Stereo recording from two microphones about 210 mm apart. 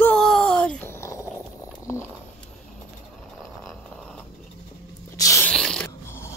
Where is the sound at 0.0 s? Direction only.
5° left (ahead or behind).